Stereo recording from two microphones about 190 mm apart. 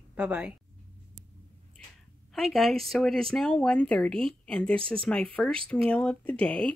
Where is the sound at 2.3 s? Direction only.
Centre (ahead or behind).